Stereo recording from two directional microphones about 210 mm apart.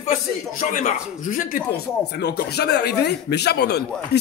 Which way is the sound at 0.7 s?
40° left (ahead or behind).